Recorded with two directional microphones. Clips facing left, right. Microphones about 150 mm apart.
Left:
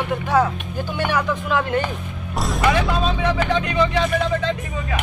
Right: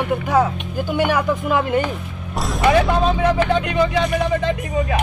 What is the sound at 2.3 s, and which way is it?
Vehicle, centre (ahead or behind).